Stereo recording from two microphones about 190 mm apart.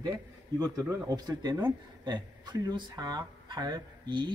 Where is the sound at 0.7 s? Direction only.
20° right (ahead or behind).